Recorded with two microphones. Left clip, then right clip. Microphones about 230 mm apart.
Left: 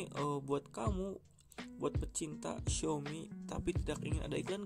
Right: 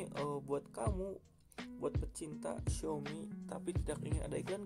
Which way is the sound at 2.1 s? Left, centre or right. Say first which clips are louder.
Left 1 dB; left.